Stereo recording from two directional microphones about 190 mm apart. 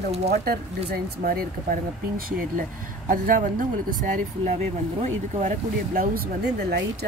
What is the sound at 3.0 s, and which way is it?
Speech, 45° right (ahead or behind).